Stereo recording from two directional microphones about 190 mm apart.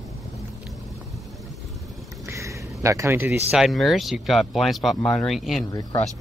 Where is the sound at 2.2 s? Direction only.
15° right (ahead or behind).